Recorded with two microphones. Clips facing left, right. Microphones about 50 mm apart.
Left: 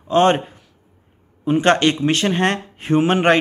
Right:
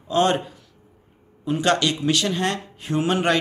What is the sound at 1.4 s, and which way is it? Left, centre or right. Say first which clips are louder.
Speech: left 5 dB; left.